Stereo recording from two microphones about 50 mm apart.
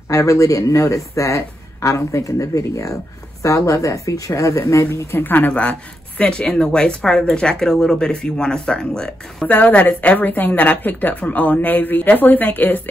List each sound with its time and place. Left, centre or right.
0.1 s speech: left
5.1 s a woman's voice: left
5.5 s speech: left
9.5 s a woman's voice: left